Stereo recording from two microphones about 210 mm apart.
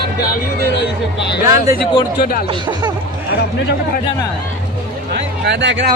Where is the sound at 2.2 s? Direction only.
45° left (ahead or behind).